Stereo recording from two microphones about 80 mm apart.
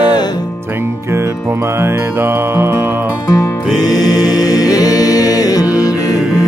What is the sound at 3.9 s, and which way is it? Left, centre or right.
Music, left.